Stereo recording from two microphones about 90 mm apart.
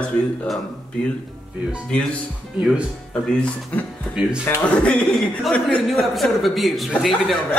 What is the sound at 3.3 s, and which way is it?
Speech, 10° left (ahead or behind).